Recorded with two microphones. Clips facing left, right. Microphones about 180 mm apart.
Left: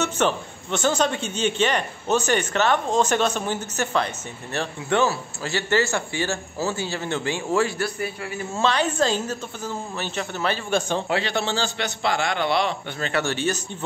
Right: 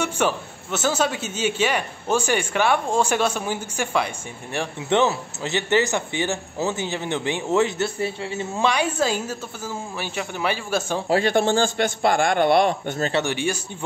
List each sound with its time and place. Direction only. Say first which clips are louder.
0.0 s a man's voice: even; 10° right (ahead or behind); by 8.5 s 25° right (ahead or behind)
8.5 s a man's voice: even; 10° right (ahead or behind)
11.1 s a man's voice: right 5 dB; 45° right (ahead or behind)
13.1 s a man's voice: left 2 dB; 15° right (ahead or behind)